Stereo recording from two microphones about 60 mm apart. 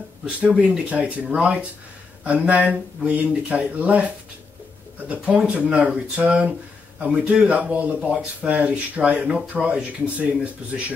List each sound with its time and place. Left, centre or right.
0.4 s speech: centre